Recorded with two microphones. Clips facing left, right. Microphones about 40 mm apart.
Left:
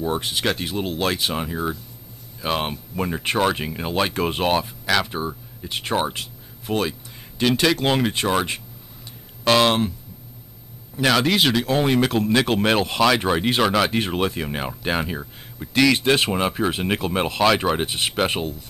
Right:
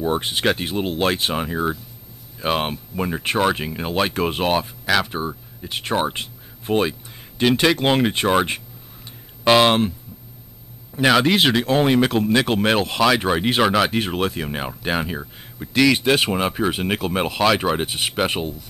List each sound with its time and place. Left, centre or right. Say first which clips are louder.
0.0 s speech: right 3 dB; centre
6.1 s speech: right 2 dB; right
11.0 s speech: right 2 dB; centre